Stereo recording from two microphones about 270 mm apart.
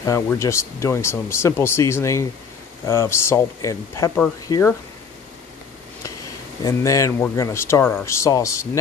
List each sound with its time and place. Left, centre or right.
0.0 s speech: centre
6.6 s speech: centre